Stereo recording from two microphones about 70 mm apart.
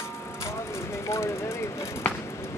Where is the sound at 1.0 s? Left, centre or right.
Left.